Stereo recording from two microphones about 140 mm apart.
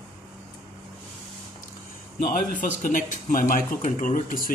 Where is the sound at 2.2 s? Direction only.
70° left (ahead or behind).